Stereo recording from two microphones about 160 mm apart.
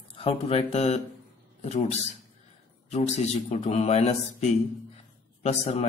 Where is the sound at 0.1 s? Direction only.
35° left (ahead or behind).